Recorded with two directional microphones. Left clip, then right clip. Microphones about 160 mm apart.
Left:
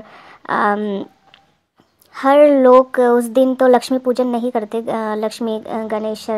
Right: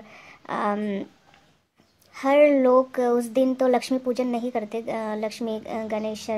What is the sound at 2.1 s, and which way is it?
Speech, 25° left (ahead or behind).